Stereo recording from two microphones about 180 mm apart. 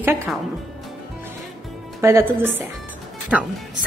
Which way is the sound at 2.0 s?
15° right (ahead or behind).